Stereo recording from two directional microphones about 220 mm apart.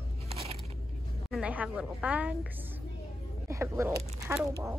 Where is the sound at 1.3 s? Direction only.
5° right (ahead or behind).